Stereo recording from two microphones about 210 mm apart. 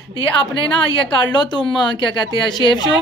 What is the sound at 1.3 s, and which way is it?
A woman's voice, 20° left (ahead or behind).